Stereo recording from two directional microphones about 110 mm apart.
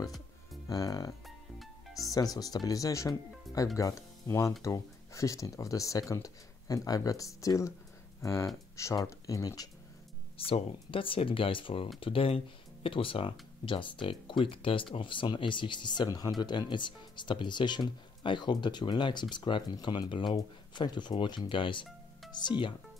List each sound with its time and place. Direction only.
0.7 s speech: 35° left (ahead or behind)
10.3 s speech: 55° left (ahead or behind)